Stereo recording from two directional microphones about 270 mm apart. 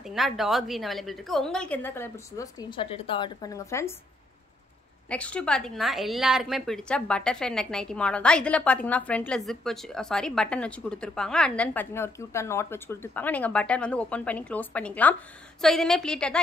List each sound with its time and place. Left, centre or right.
0.0 s a woman's voice: centre
5.1 s a woman's voice: centre